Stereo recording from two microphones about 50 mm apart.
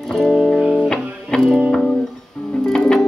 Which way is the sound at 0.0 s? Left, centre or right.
Centre.